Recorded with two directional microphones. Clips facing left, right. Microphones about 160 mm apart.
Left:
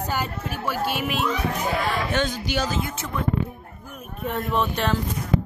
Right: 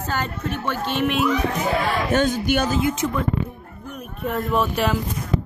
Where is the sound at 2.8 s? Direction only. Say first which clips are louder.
Right 8 dB; 20° right (ahead or behind).